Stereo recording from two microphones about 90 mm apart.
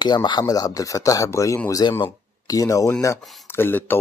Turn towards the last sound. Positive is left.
turn(degrees=25)  # may be behind; listen again after turning